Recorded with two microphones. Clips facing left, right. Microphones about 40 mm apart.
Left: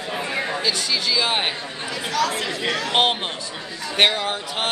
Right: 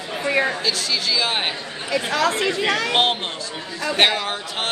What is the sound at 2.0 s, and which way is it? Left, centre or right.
Speech, right.